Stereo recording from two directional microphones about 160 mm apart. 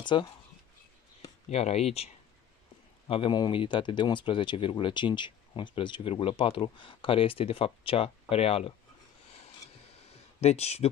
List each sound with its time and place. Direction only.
0.0 s speech: 30° left (ahead or behind)
1.5 s speech: 40° left (ahead or behind)
3.1 s speech: 30° left (ahead or behind)
9.9 s a sound: 40° left (ahead or behind)